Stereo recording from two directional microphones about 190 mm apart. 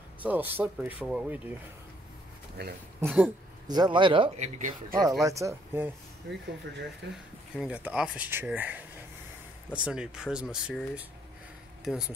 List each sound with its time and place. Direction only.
0.3 s speech: 10° right (ahead or behind)
2.6 s speech: 60° right (ahead or behind)
3.0 s speech: 10° right (ahead or behind)
3.6 s speech: 20° right (ahead or behind)
4.6 s speech: 45° right (ahead or behind)
5.2 s speech: 15° right (ahead or behind)
7.0 s speech: 65° right (ahead or behind)
7.5 s speech: 5° right (ahead or behind)
9.8 s speech: 5° right (ahead or behind)